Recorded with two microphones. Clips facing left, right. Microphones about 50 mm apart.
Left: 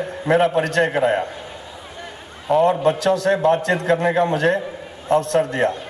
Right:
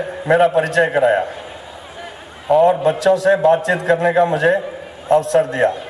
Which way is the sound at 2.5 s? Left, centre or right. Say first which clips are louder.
Right 3 dB; centre.